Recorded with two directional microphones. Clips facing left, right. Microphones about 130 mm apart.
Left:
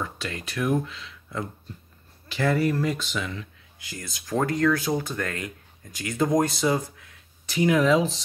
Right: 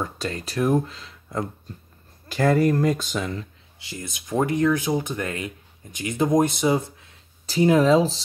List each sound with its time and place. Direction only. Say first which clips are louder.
0.0 s speech: right 4 dB; 35° right (ahead or behind)
3.8 s speech: right 3 dB; 20° right (ahead or behind)